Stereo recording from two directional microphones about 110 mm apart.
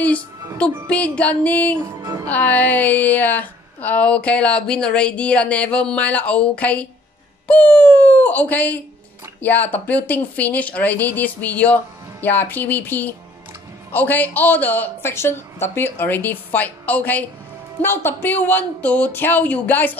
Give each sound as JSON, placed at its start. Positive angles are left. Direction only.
{"t": 0.8, "sound": "speech", "side_deg": 10}
{"t": 2.0, "sound": "music", "side_deg": -35}
{"t": 2.2, "sound": "speech", "side_deg": 15}